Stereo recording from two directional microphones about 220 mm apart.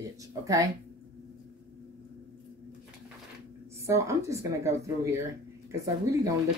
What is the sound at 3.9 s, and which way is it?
Speech, 15° right (ahead or behind).